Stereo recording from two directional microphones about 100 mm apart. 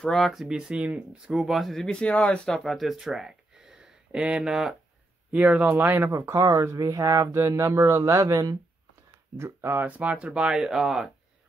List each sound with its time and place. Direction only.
0.0 s speech: 5° left (ahead or behind)
5.3 s speech: 15° right (ahead or behind)